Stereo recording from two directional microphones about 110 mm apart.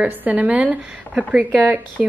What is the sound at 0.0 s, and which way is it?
A woman's voice, 15° right (ahead or behind).